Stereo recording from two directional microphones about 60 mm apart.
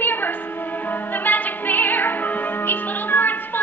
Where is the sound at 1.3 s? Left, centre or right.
Left.